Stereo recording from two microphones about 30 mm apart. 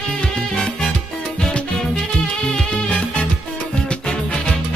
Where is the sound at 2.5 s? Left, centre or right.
Left.